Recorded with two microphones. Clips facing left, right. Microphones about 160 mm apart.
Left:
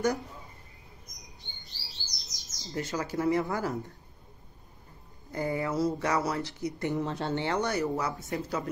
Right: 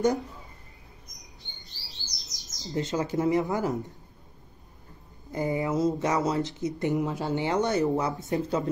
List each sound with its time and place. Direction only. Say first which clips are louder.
1.8 s chirp: right 2 dB; centre (ahead or behind)
2.7 s speech: right 4 dB; 20° right (ahead or behind)
5.3 s speech: right 3 dB; 20° right (ahead or behind)